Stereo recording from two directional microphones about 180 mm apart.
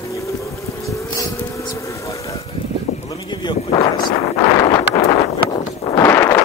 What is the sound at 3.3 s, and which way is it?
Speech, 25° left (ahead or behind).